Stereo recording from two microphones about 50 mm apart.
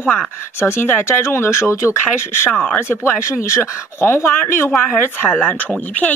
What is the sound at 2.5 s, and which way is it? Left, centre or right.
Speech, left.